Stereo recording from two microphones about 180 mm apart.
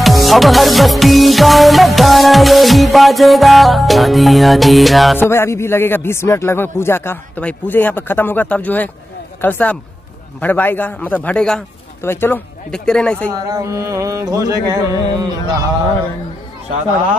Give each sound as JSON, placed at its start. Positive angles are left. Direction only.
{"t": 0.0, "sound": "music", "side_deg": 0}
{"t": 5.1, "sound": "a man's voice", "side_deg": 10}
{"t": 13.3, "sound": "carnatic music", "side_deg": -20}